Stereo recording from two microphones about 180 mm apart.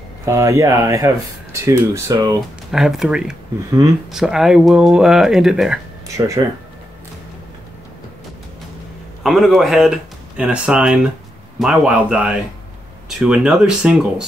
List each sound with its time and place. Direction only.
0.2 s speech: 15° right (ahead or behind)
2.7 s speech: centre (ahead or behind)
6.1 s speech: 15° right (ahead or behind)
9.2 s speech: centre (ahead or behind)